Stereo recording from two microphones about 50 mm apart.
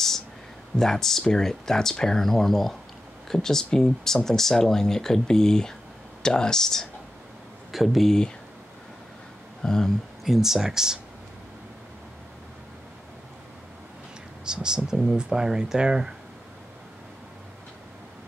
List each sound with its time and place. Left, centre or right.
0.7 s speech: centre
7.7 s speech: centre
9.6 s speech: centre
10.2 s speech: centre
14.4 s speech: centre